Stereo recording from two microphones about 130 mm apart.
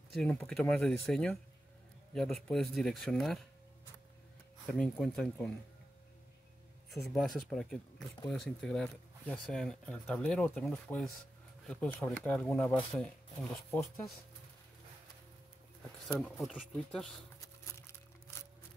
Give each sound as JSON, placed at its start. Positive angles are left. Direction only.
{"t": 0.1, "sound": "speech", "side_deg": 0}
{"t": 4.6, "sound": "speech", "side_deg": 10}
{"t": 7.1, "sound": "speech", "side_deg": 0}
{"t": 13.7, "sound": "speech", "side_deg": 15}
{"t": 16.2, "sound": "speech", "side_deg": 0}